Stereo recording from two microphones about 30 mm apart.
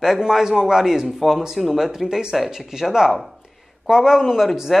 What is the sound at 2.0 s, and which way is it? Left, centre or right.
A man's voice, centre.